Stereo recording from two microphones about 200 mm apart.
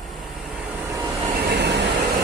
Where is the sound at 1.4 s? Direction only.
55° right (ahead or behind).